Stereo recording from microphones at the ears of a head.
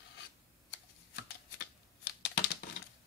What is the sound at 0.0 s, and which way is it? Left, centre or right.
Shuffling cards, left.